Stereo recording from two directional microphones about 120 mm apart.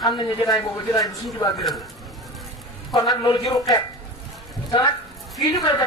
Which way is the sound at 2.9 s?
35° left (ahead or behind).